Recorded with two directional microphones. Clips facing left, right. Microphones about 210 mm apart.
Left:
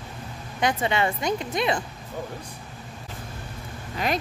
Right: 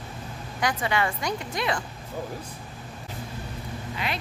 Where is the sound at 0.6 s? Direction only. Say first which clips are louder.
Left 2 dB; 25° left (ahead or behind).